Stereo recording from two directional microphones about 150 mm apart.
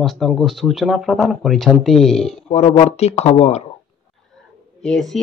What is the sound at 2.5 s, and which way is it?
Speech, 45° left (ahead or behind).